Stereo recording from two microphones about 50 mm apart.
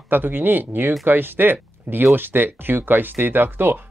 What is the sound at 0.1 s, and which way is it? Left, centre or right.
Speech, right.